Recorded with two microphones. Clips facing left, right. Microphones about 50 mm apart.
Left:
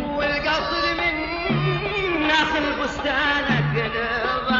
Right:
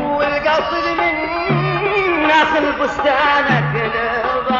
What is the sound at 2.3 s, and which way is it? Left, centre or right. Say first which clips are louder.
Music: right 7 dB; right.